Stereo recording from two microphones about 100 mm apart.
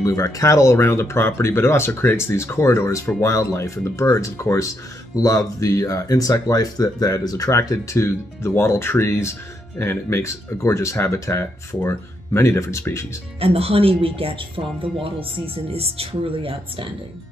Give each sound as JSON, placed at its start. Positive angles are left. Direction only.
{"t": 0.0, "sound": "speech", "side_deg": 35}
{"t": 13.4, "sound": "speech", "side_deg": -75}